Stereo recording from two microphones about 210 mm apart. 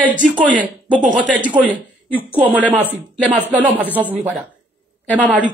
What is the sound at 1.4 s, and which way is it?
Speech, 5° right (ahead or behind).